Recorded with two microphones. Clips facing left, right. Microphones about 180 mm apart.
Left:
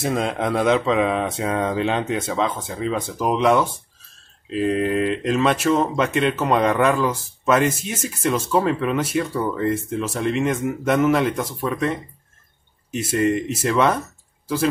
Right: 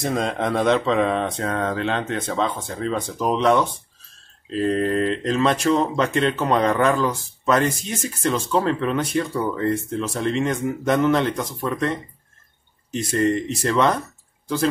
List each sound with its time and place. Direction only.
0.0 s speech: 5° left (ahead or behind)